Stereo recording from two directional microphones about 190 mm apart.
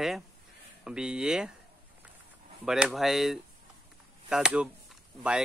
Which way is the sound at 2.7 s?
Centre (ahead or behind).